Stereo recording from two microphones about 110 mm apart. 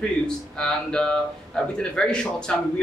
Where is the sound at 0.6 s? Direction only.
10° left (ahead or behind).